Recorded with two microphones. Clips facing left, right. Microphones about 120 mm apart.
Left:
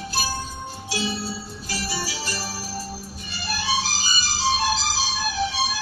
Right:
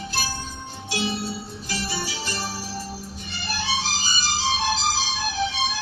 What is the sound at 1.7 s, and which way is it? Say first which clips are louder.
Music: even; 5° left (ahead or behind).